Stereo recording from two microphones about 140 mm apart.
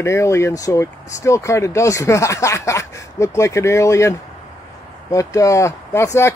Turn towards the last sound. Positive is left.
turn(degrees=20)  # may be behind; listen again after turning